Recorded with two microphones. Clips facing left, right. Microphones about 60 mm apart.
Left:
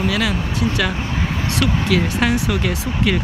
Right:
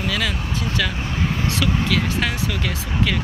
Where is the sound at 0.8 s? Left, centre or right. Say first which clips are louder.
Left 2 dB; centre.